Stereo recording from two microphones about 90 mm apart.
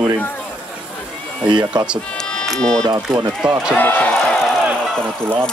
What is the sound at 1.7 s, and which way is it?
Speech, 55° right (ahead or behind).